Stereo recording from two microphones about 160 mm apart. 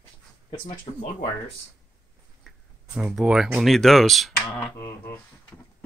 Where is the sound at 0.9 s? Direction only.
40° left (ahead or behind).